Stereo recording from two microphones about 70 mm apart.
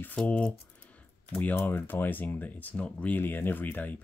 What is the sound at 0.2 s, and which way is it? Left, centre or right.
Typing, centre.